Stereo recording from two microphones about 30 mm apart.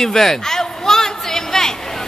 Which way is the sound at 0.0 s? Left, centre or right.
Centre.